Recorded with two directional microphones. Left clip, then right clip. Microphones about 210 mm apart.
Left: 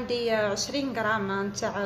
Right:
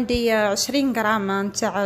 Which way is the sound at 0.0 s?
45° right (ahead or behind).